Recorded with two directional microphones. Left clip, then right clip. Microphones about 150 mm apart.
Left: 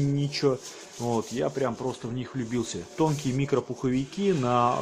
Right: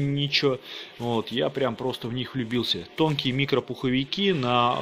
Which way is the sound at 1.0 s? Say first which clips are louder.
Right 2 dB; 15° right (ahead or behind).